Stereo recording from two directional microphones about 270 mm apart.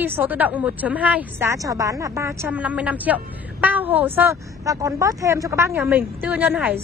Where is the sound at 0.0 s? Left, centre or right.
Centre.